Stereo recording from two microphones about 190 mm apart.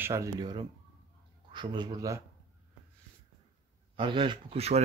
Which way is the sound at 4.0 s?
25° right (ahead or behind).